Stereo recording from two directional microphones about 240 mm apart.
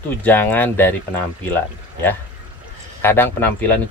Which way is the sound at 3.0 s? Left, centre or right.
Centre.